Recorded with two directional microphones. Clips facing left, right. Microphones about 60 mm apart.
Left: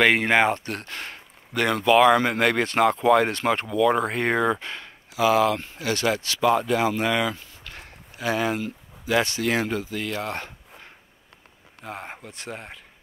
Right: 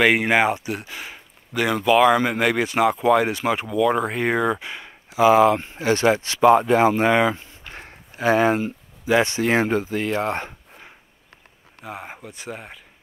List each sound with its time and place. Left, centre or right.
0.0 s speech: centre
5.1 s speech: right
11.8 s speech: centre